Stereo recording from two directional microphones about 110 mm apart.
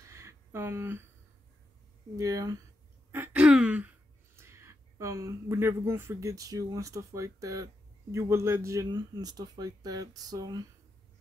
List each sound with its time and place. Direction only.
0.0 s a sound: 30° right (ahead or behind)
2.1 s speech: 30° right (ahead or behind)
3.1 s throat clearing: 20° right (ahead or behind)
3.4 s speech: 10° right (ahead or behind)
4.4 s speech: 25° right (ahead or behind)
8.9 s speech: 40° right (ahead or behind)